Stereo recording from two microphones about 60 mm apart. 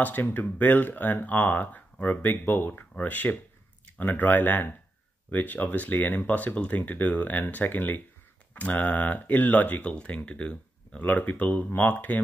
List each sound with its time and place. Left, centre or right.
0.0 s speech: left
9.8 s speech: centre